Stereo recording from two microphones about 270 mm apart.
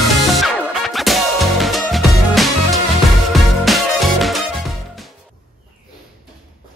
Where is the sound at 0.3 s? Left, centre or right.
Centre.